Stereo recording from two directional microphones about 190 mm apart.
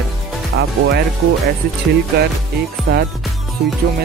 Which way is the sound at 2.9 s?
50° right (ahead or behind).